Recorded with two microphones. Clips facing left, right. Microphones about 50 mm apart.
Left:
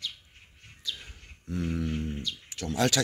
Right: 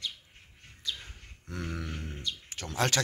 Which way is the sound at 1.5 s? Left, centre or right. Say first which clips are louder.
Left 6 dB; right.